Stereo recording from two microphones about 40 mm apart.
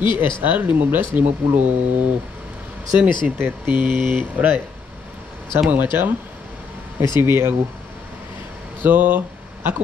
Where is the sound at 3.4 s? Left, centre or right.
Right.